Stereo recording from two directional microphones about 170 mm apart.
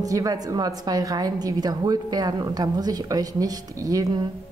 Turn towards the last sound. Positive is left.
turn(degrees=-20)  # may be behind; listen again after turning